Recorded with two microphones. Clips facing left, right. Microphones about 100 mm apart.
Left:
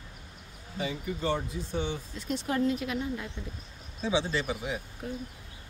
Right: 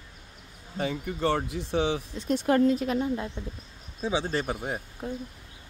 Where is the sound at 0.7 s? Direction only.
65° right (ahead or behind); by 2.0 s 85° right.